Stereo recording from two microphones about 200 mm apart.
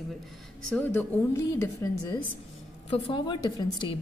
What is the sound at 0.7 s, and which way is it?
A woman's voice, 10° left (ahead or behind).